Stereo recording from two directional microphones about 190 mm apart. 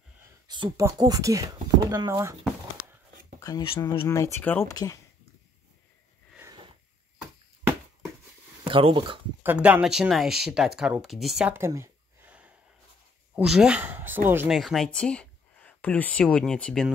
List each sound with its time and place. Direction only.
0.5 s speech: 20° right (ahead or behind)
3.3 s speech: 20° left (ahead or behind)
4.2 s speech: 10° left (ahead or behind)
8.6 s speech: 25° right (ahead or behind)
9.4 s speech: 10° right (ahead or behind)
14.5 s speech: centre (ahead or behind)